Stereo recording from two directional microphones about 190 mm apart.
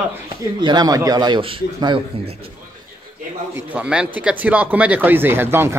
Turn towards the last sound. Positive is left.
turn(degrees=-10)  # may be behind; listen again after turning